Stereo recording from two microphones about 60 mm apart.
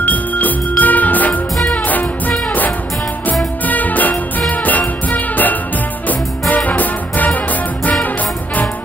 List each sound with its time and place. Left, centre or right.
0.0 s music: left